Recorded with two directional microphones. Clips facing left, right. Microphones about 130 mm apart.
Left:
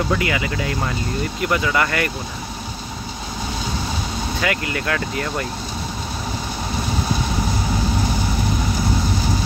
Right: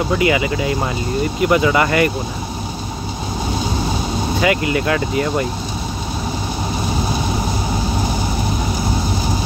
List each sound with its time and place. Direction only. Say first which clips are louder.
0.2 s speech: right 6 dB; 15° right (ahead or behind)
4.4 s speech: right 7 dB; 15° right (ahead or behind)